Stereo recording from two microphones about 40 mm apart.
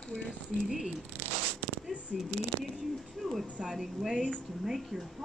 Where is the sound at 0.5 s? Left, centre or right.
Right.